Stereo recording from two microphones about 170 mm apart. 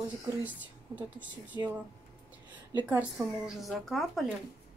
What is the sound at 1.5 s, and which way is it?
Speech, 20° right (ahead or behind).